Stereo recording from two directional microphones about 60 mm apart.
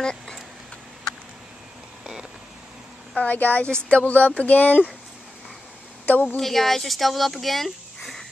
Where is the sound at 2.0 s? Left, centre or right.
Centre.